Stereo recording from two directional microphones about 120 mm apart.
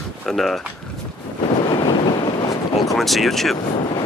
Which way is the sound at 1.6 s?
40° left (ahead or behind).